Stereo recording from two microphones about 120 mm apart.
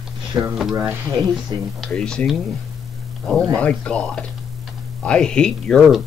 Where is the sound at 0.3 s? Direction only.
25° right (ahead or behind).